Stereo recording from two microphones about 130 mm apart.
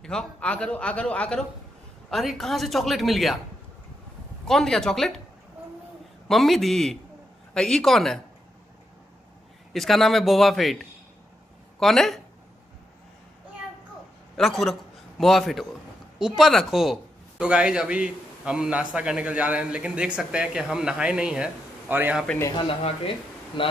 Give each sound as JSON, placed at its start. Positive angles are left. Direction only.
{"t": 0.0, "sound": "a man's voice", "side_deg": 5}
{"t": 4.5, "sound": "a woman's voice", "side_deg": 5}
{"t": 6.2, "sound": "a woman's voice", "side_deg": 0}
{"t": 9.7, "sound": "a woman's voice", "side_deg": 0}
{"t": 14.3, "sound": "a man's voice", "side_deg": 0}
{"t": 22.7, "sound": "speech", "side_deg": 45}